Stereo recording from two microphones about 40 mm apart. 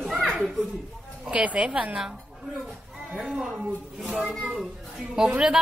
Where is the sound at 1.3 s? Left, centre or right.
Right.